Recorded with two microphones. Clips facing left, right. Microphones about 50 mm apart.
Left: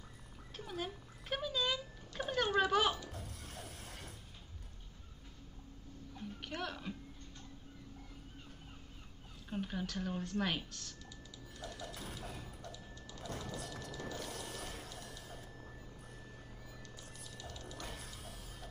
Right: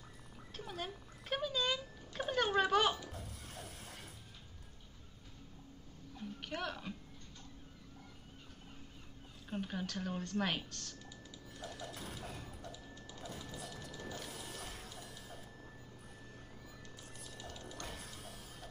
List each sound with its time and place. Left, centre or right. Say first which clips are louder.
0.6 s speech: left 2 dB; centre
3.0 s stir: even; centre
6.4 s speech: right 1 dB; centre
9.5 s a woman's voice: even; centre
11.5 s mechanisms: even; centre
12.7 s music: even; centre
13.3 s music: left 5 dB; centre
17.0 s music: right 2 dB; centre
17.7 s mechanisms: even; centre